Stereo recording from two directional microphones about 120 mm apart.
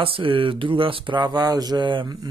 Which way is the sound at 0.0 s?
50° right (ahead or behind).